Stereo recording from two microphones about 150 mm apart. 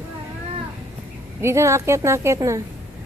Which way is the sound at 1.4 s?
20° right (ahead or behind).